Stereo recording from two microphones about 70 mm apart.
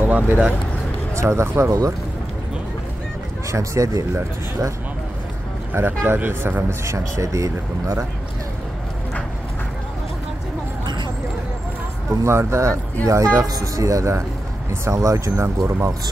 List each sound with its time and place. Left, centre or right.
0.0 s speech: right
1.1 s speech: right
1.7 s speech: right
3.5 s speech: right
5.7 s speech: right
6.8 s speech: right
12.1 s speech: right